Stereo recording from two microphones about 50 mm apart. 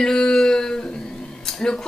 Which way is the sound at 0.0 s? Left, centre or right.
Centre.